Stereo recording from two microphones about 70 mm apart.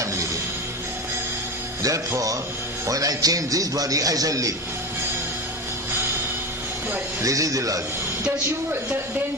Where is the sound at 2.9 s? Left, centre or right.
Right.